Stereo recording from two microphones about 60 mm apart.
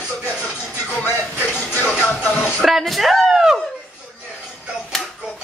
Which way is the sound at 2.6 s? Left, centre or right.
Centre.